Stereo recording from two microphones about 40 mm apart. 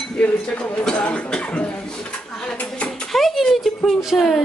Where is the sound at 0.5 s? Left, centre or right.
Left.